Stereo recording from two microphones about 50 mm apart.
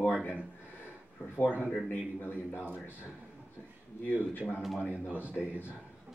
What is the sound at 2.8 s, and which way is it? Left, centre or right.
Speech, right.